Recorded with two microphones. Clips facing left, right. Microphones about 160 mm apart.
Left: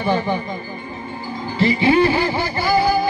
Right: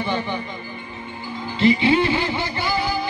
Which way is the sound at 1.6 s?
20° right (ahead or behind).